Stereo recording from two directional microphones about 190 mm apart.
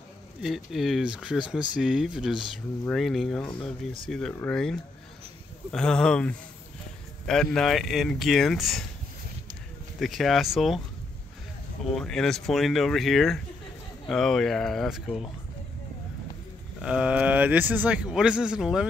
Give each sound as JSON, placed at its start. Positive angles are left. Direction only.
{"t": 0.4, "sound": "a man's voice", "side_deg": 0}
{"t": 7.5, "sound": "a man's voice", "side_deg": 0}
{"t": 9.9, "sound": "a man's voice", "side_deg": 0}
{"t": 11.9, "sound": "a man's voice", "side_deg": 5}
{"t": 16.8, "sound": "a man's voice", "side_deg": -5}